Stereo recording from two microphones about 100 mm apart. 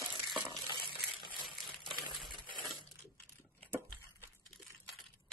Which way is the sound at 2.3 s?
55° right (ahead or behind).